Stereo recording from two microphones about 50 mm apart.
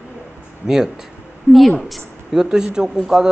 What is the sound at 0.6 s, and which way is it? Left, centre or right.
Speech, centre.